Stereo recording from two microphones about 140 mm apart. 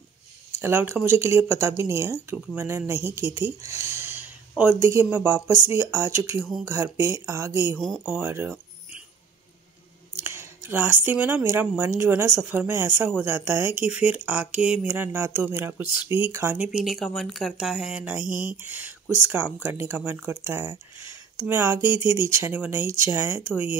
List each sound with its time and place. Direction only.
0.6 s a woman's voice: 15° right (ahead or behind)
7.7 s speech: 5° left (ahead or behind)
8.0 s speech: 15° right (ahead or behind)
10.1 s a woman's voice: 15° right (ahead or behind)